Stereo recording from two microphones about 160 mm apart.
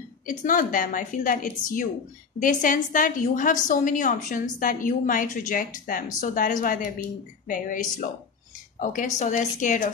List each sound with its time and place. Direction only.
0.3 s a woman's voice: 55° left (ahead or behind)